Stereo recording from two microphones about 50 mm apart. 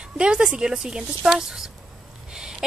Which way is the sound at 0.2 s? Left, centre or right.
Centre.